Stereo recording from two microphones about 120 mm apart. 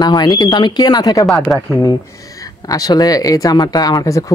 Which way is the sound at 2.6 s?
30° left (ahead or behind).